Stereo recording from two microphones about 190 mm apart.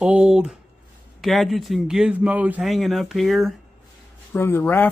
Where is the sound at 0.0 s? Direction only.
5° right (ahead or behind).